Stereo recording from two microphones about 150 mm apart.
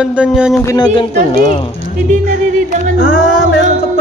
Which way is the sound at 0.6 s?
30° left (ahead or behind).